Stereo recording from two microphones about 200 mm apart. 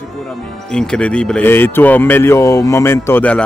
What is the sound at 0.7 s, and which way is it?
Speech, 5° left (ahead or behind).